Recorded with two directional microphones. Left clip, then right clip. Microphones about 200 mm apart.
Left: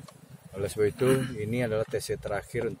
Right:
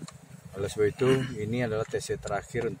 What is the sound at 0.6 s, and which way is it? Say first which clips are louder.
Speech: even; 5° left (ahead or behind).